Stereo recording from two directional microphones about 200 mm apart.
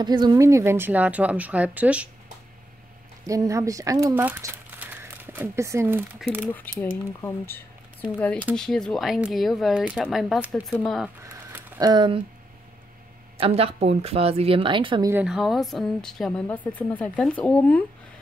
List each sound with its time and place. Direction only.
0.0 s speech: 20° right (ahead or behind)
3.3 s speech: 15° right (ahead or behind)
6.5 s a woman's voice: 10° left (ahead or behind)
11.5 s a sound: 10° right (ahead or behind)
11.9 s a woman's voice: 25° right (ahead or behind)
13.4 s a woman's voice: 30° right (ahead or behind)
15.0 s a woman's voice: 5° right (ahead or behind)